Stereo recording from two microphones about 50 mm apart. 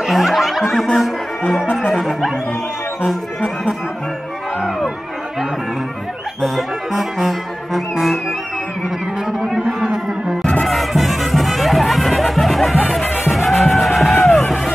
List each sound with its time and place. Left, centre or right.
0.0 s snicker: centre
1.6 s music: centre
1.9 s music: centre
4.6 s music: centre
6.4 s music: centre
9.6 s music: centre
10.6 s music: centre